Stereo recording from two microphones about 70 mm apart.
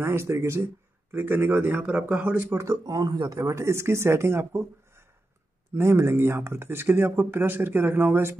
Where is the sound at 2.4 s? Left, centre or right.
Right.